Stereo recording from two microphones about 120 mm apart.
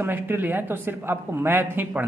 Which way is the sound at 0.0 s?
15° right (ahead or behind).